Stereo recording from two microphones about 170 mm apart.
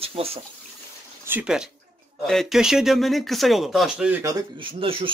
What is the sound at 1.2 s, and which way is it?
Speech, 10° right (ahead or behind).